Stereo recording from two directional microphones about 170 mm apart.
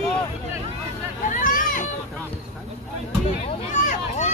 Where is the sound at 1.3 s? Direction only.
50° left (ahead or behind).